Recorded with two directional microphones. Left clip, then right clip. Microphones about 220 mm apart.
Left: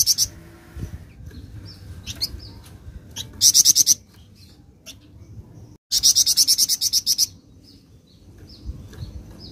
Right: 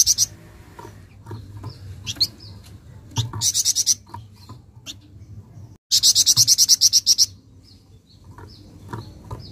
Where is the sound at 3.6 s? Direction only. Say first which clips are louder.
Left 4 dB; centre (ahead or behind).